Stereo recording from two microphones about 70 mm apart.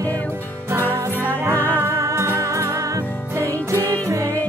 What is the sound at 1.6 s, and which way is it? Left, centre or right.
Music, left.